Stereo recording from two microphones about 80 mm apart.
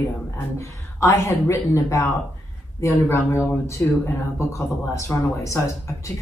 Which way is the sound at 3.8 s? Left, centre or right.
Left.